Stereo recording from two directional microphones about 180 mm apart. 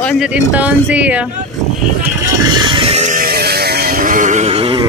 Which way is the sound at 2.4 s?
25° right (ahead or behind).